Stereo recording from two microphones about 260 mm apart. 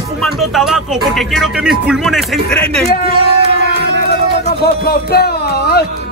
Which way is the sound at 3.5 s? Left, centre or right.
Left.